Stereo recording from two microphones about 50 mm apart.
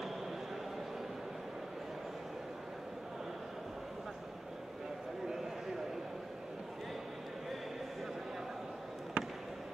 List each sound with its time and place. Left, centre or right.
9.2 s basketball bounce: right